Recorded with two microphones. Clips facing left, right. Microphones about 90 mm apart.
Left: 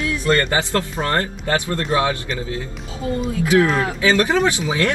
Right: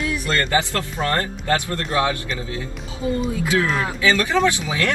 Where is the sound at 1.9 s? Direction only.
35° left (ahead or behind).